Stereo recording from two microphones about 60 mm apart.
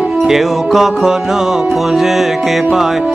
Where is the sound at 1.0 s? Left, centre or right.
Centre.